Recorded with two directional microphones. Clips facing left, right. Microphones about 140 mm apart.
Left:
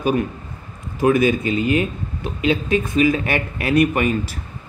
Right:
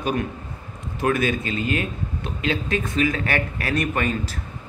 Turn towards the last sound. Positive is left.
turn(degrees=10)  # may be behind; listen again after turning